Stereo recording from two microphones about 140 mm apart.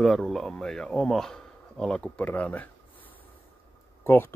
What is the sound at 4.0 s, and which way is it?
Speech, 15° left (ahead or behind).